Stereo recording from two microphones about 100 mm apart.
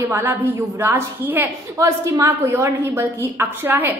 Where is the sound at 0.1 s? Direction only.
20° right (ahead or behind).